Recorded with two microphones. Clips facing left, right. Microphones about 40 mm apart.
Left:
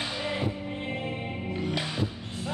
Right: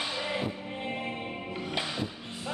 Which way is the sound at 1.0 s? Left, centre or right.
Centre.